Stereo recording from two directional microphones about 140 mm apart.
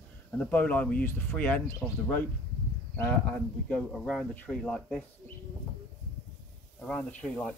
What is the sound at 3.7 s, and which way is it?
Speech, 5° left (ahead or behind).